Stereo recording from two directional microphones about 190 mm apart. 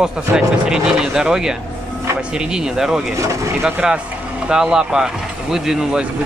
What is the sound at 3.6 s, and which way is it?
Speech, 5° right (ahead or behind).